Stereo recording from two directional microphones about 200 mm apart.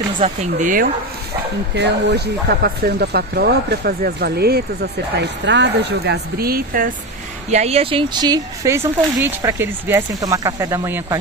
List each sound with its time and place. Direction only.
0.2 s speech: 40° right (ahead or behind)
1.8 s speech: 55° right (ahead or behind)
7.5 s speech: 30° right (ahead or behind); by 11.1 s 15° right (ahead or behind)